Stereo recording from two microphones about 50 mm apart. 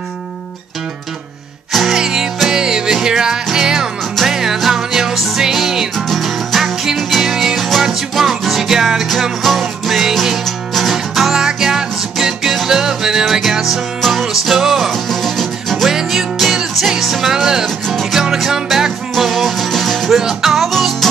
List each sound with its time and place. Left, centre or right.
1.7 s music: centre
10.4 s music: centre
14.9 s music: centre
20.2 s music: centre